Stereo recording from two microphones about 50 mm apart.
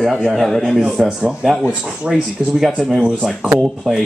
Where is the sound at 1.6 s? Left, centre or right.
Right.